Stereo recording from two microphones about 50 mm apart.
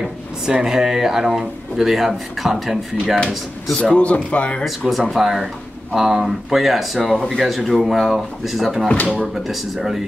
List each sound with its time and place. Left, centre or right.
0.5 s speech: centre
3.9 s speech: left
4.6 s speech: centre